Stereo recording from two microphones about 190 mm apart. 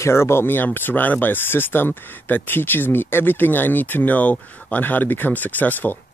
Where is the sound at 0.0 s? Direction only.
15° left (ahead or behind).